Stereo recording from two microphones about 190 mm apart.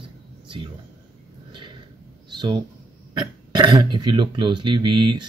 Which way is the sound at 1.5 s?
25° right (ahead or behind).